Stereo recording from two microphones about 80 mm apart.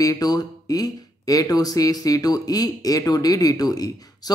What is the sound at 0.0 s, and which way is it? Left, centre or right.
Speech, left.